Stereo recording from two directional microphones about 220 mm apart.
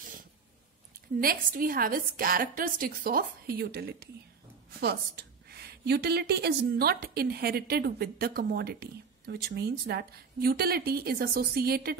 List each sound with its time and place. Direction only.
1.2 s a woman's voice: 40° right (ahead or behind)